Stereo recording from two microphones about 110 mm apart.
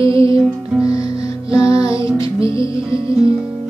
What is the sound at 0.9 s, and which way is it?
Music, 30° left (ahead or behind).